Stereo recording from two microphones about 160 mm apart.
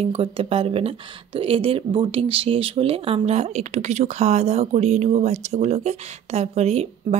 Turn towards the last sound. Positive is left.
turn(degrees=-40)  # may be behind; listen again after turning